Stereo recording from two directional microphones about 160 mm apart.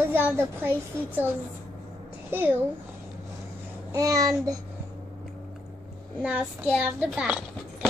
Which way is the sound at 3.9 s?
20° right (ahead or behind).